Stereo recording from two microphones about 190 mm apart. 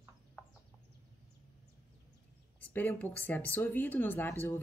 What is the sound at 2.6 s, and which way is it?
Speech, 10° left (ahead or behind).